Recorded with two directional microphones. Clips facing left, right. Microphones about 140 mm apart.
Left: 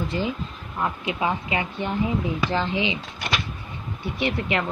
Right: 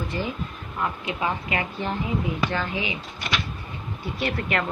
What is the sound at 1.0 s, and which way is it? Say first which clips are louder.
A woman's voice: left 2 dB; 20° left (ahead or behind).